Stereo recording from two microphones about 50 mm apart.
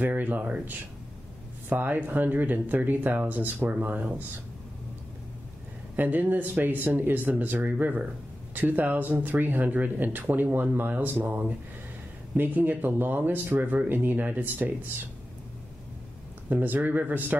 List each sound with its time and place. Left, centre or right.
0.0 s speech: right
5.9 s speech: right
16.4 s speech: right